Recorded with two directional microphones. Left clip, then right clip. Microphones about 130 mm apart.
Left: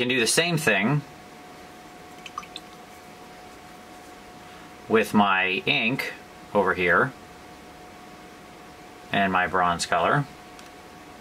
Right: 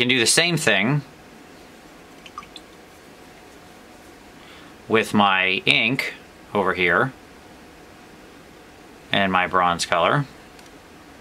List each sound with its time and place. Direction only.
0.0 s speech: 40° right (ahead or behind)
4.9 s speech: 35° right (ahead or behind)
9.1 s speech: 35° right (ahead or behind)